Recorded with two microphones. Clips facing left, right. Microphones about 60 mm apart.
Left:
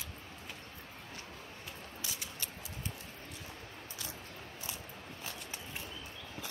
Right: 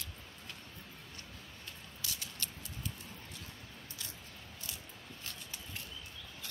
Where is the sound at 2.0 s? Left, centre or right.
Centre.